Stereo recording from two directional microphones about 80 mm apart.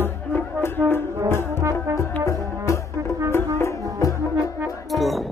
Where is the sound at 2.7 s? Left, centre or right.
Left.